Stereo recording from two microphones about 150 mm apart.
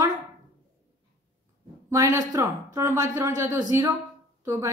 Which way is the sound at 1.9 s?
20° right (ahead or behind).